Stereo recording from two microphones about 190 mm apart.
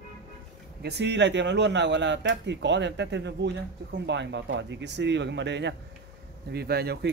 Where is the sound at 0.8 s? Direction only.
65° right (ahead or behind).